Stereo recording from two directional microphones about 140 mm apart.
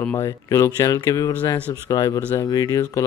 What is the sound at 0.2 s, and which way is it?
Speech, 20° left (ahead or behind).